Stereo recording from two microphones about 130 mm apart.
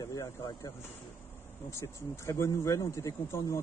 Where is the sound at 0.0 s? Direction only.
25° left (ahead or behind).